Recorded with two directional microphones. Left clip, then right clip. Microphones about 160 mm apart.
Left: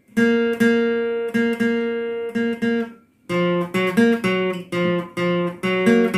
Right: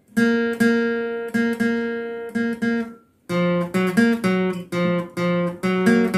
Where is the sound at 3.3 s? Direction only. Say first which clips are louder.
Left 1 dB; 30° right (ahead or behind).